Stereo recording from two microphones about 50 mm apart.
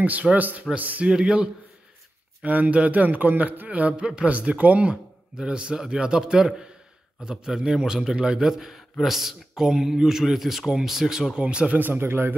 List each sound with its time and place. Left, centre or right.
0.0 s a man's voice: right
1.0 s speech: centre
2.4 s a man's voice: right
4.0 s speech: centre
4.3 s speech: right; by 11.4 s centre
11.4 s speech: right
11.7 s speech: right